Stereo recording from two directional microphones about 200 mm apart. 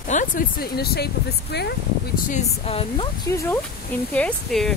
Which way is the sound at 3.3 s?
15° left (ahead or behind).